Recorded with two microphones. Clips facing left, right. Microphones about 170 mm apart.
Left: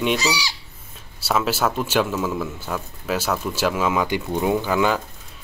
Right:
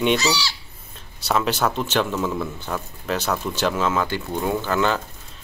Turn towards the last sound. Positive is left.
turn(degrees=10)  # may be behind; listen again after turning